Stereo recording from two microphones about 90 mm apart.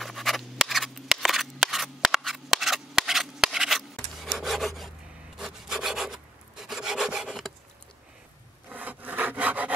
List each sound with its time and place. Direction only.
0.0 s scissors: centre (ahead or behind)
5.4 s rub: 5° right (ahead or behind)
8.6 s wood: 20° right (ahead or behind)